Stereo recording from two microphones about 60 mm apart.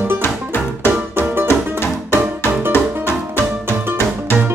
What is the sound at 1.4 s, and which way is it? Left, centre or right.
Music, left.